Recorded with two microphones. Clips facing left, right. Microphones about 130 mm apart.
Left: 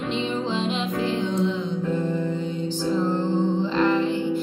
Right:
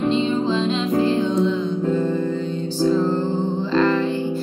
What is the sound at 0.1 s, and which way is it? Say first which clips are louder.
Music: right 6 dB; 15° left (ahead or behind).